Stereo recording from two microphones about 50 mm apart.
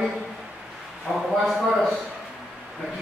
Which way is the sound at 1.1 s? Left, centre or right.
Centre.